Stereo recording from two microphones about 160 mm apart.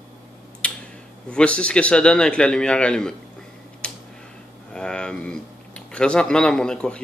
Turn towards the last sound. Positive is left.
turn(degrees=5)  # may be behind; listen again after turning